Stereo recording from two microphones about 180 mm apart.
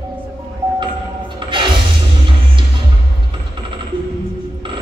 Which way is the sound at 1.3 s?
25° right (ahead or behind).